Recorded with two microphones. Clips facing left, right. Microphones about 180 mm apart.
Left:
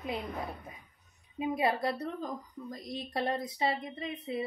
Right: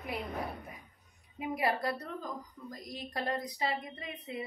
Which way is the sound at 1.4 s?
25° left (ahead or behind).